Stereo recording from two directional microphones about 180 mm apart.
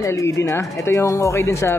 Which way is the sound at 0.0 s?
15° left (ahead or behind).